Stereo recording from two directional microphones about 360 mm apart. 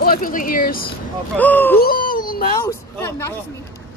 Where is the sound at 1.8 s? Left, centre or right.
Left.